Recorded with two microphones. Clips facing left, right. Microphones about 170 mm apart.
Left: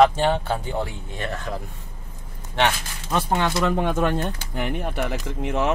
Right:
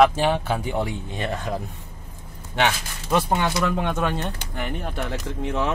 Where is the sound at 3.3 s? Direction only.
Centre (ahead or behind).